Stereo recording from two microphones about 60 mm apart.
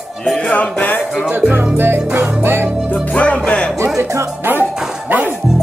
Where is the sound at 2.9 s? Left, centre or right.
Left.